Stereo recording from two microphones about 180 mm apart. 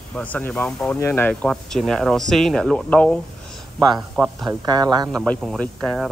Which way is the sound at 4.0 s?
5° right (ahead or behind).